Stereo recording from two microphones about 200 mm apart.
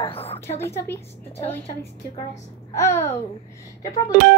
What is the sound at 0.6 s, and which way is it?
A woman's voice, 10° left (ahead or behind).